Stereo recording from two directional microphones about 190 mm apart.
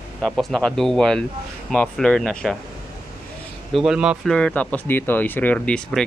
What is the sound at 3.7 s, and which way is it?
Speech, 5° right (ahead or behind).